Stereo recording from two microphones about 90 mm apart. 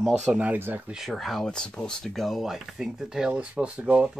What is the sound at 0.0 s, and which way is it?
Speech, 10° right (ahead or behind).